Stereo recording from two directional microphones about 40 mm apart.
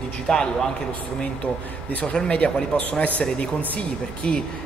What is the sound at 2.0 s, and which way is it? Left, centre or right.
A man's voice, left.